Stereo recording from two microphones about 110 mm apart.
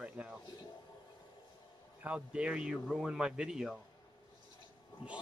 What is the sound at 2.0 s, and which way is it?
Speech, 10° right (ahead or behind).